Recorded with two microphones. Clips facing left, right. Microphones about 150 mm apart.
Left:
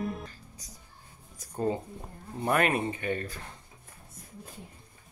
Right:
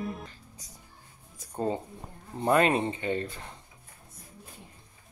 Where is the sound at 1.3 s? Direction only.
25° right (ahead or behind).